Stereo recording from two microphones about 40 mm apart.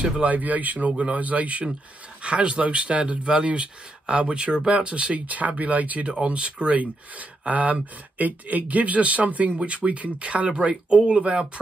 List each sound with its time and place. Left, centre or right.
0.0 s speech: right
6.0 s speech: right